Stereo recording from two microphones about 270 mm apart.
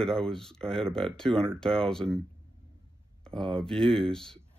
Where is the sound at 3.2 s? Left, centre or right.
Centre.